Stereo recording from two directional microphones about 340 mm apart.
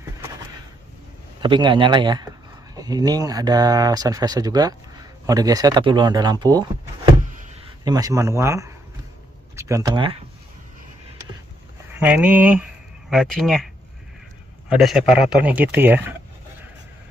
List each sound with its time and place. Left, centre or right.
1.4 s speech: centre
7.2 s a sound: right
7.8 s speech: centre
12.0 s a man's voice: centre
14.7 s a man's voice: centre